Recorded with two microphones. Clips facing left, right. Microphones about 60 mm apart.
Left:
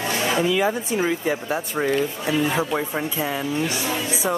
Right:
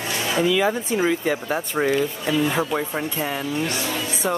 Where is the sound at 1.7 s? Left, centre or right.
Centre.